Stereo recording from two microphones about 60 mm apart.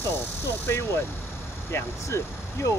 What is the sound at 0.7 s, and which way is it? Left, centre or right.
Speech, left.